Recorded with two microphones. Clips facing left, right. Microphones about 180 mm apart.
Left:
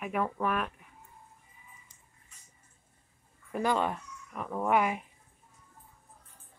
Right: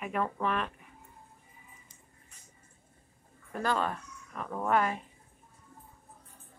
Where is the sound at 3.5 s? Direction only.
15° left (ahead or behind).